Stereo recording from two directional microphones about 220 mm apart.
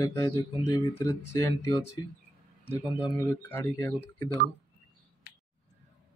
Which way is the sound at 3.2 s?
10° left (ahead or behind).